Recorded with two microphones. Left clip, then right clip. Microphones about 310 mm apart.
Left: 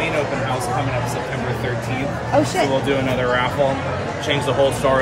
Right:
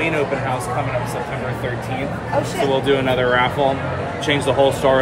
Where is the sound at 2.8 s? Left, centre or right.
Centre.